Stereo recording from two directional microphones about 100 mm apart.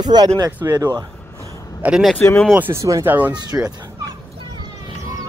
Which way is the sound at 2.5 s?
20° right (ahead or behind).